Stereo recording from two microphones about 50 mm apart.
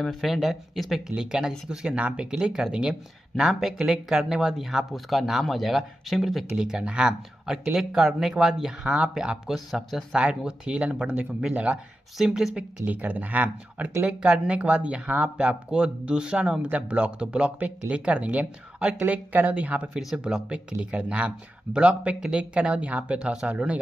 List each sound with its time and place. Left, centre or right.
0.2 s speech: centre
1.1 s speech: centre
6.5 s speech: centre
9.5 s speech: centre
10.1 s speech: centre
12.8 s speech: right
14.0 s speech: centre
15.3 s speech: centre
16.7 s speech: right
20.0 s speech: centre
20.7 s speech: right